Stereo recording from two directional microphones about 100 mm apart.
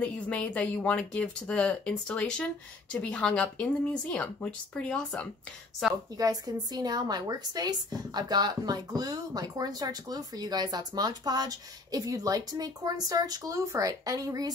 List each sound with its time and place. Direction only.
0.0 s speech: 15° left (ahead or behind)
5.8 s a woman's voice: centre (ahead or behind)
6.1 s speech: 40° right (ahead or behind)